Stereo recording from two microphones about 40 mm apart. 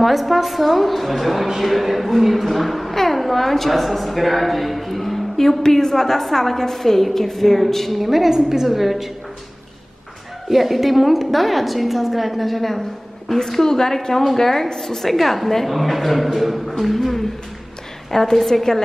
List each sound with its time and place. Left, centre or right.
0.0 s a woman's voice: centre
10.5 s a woman's voice: centre